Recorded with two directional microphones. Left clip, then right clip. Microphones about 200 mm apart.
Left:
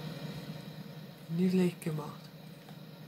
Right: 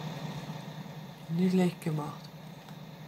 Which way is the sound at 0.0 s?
Centre (ahead or behind).